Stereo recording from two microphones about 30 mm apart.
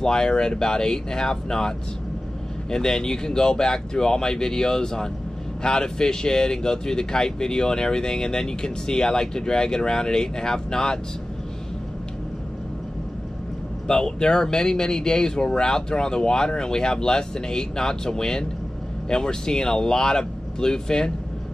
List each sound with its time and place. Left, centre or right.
0.0 s speech: left
2.7 s speech: centre
13.8 s speech: left